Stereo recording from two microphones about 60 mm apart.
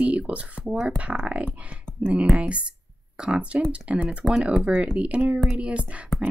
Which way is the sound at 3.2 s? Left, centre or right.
Centre.